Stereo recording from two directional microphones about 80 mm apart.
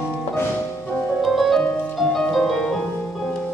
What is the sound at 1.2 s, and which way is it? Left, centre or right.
Music, centre.